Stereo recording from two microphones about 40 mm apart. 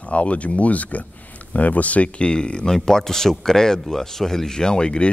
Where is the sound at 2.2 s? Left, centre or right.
Left.